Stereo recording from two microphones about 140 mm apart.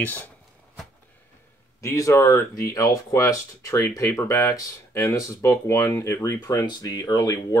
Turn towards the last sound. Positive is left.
turn(degrees=25)  # may be behind; listen again after turning